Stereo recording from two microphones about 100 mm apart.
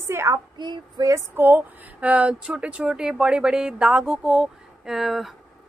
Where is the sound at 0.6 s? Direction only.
45° right (ahead or behind).